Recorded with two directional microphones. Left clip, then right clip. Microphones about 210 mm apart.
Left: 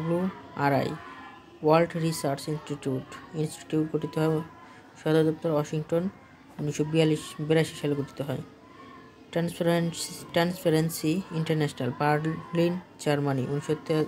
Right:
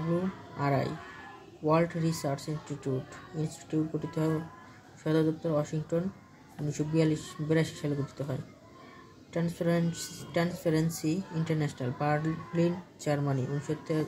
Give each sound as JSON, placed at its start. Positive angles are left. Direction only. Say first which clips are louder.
{"t": 0.6, "sound": "speech", "louder": "left 5 dB", "side_deg": 40}